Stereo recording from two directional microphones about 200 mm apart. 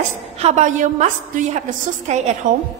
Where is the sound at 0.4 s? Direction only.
35° right (ahead or behind).